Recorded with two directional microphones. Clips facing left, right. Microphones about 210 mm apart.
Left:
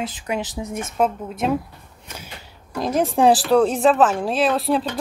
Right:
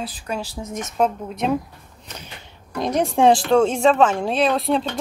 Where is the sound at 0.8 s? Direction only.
5° left (ahead or behind).